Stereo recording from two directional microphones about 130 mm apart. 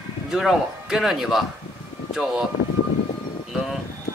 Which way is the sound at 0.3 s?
Centre (ahead or behind).